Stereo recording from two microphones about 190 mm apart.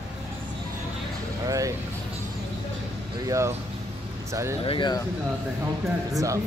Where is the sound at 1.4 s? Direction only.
20° right (ahead or behind).